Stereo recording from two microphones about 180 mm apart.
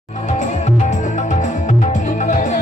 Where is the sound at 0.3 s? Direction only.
40° left (ahead or behind).